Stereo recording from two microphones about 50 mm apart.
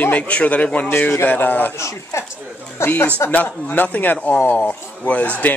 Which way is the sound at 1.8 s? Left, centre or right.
Left.